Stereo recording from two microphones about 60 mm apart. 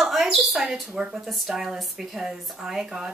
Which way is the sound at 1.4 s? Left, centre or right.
Centre.